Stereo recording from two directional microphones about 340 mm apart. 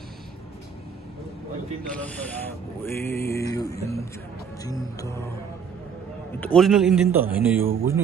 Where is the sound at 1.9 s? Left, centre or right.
Centre.